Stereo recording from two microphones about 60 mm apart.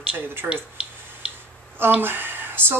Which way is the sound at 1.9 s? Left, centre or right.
Right.